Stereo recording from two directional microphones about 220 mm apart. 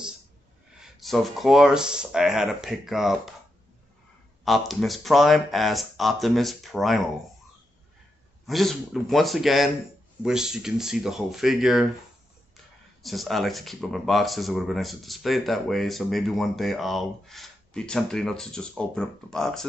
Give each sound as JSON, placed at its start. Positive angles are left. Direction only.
{"t": 0.7, "sound": "speech", "side_deg": 0}
{"t": 4.5, "sound": "speech", "side_deg": 0}
{"t": 8.5, "sound": "speech", "side_deg": 0}
{"t": 13.0, "sound": "speech", "side_deg": 0}